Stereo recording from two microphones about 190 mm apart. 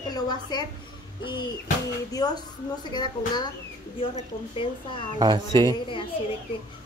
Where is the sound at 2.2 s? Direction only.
20° left (ahead or behind).